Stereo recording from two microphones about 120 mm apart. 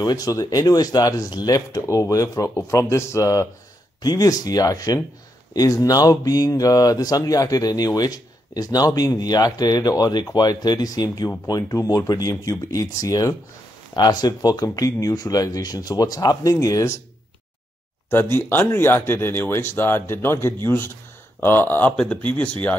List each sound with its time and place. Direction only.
0.0 s speech: 30° left (ahead or behind)
18.1 s speech: 20° left (ahead or behind)